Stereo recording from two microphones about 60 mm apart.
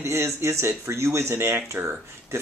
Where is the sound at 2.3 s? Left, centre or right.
Right.